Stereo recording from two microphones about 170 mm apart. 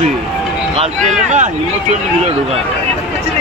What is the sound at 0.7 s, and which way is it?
Run, 40° right (ahead or behind).